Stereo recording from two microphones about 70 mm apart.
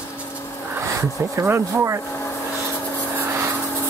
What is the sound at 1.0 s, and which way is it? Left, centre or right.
Speech, right.